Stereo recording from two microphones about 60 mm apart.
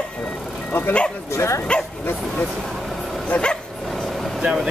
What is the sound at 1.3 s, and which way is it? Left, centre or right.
Speech, left.